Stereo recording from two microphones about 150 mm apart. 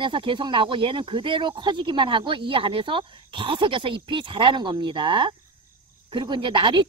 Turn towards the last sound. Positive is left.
turn(degrees=-30)  # may be behind; listen again after turning